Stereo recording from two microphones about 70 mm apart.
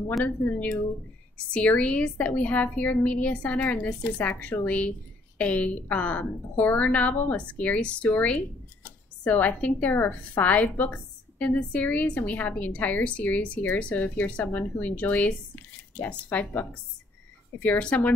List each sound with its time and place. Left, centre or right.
0.2 s a woman's voice: left